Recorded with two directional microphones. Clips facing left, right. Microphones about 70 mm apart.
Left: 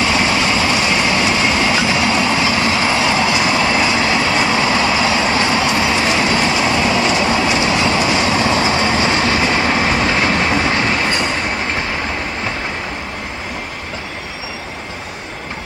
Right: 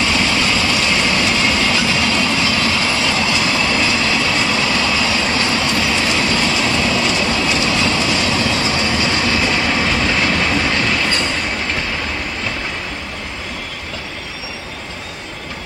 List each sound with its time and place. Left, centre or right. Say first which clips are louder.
0.1 s train: left 2 dB; left